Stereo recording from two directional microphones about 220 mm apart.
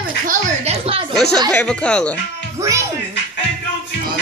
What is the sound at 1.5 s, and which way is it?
Speech, 5° left (ahead or behind).